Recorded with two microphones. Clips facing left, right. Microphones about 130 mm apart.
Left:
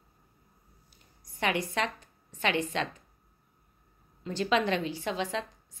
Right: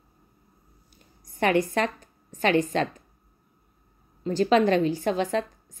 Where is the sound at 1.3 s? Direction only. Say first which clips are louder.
Right 7 dB; 50° right (ahead or behind).